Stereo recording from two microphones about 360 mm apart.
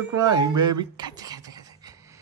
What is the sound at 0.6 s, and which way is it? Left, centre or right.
Speech, centre.